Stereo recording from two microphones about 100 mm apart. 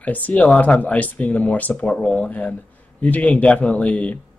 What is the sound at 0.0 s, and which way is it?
Speech, 15° left (ahead or behind).